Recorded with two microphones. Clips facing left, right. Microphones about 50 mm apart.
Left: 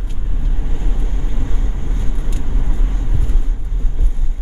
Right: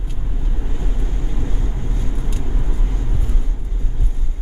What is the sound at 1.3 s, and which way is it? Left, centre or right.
Vehicle, left.